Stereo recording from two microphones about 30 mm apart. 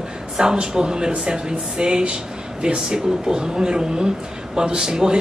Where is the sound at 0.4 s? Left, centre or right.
Right.